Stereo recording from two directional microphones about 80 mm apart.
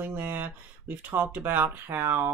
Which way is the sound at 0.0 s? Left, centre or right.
Right.